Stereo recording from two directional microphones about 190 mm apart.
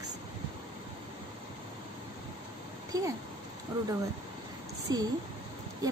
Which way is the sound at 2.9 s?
20° right (ahead or behind).